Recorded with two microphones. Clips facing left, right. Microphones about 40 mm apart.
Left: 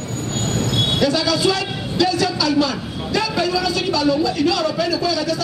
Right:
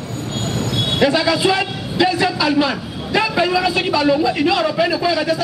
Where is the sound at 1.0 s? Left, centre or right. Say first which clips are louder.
Right 4 dB; right.